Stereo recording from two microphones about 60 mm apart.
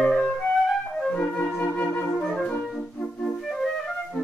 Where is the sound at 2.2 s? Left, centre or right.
Centre.